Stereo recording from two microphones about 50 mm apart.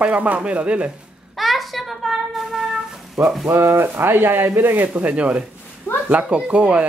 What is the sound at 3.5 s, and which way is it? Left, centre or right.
Speech, right.